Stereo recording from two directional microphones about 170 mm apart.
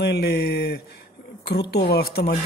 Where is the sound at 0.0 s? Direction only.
70° left (ahead or behind).